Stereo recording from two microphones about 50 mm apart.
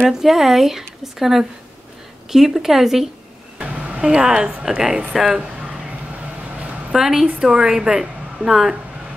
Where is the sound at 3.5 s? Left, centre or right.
Right.